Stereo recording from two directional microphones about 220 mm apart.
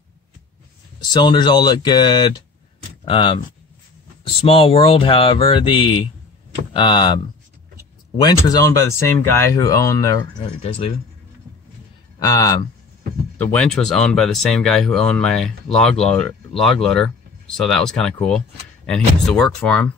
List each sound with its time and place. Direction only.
1.1 s speech: 20° left (ahead or behind)
4.5 s speech: 25° left (ahead or behind)
8.2 s speech: 20° left (ahead or behind)
10.6 s speech: 25° left (ahead or behind)
12.2 s speech: 15° left (ahead or behind)
13.4 s speech: 5° left (ahead or behind)